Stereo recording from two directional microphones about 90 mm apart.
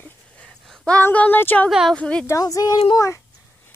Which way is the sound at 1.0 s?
20° left (ahead or behind).